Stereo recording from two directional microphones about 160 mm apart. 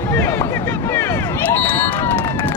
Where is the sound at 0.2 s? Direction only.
15° left (ahead or behind).